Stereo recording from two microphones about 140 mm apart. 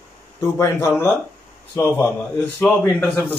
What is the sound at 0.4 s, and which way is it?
Speech, 20° left (ahead or behind).